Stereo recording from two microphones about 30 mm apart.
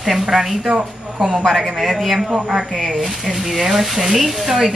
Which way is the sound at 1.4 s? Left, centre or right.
Centre.